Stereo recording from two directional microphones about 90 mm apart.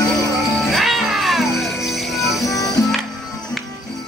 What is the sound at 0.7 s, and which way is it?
Music, centre (ahead or behind).